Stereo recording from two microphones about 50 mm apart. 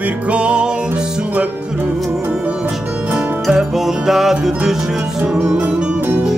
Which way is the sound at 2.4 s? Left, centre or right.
Right.